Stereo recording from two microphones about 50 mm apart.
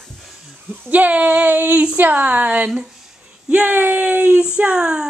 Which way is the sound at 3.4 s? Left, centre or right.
Right.